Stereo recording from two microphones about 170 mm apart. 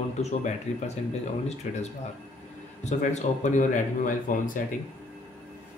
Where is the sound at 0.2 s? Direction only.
40° left (ahead or behind).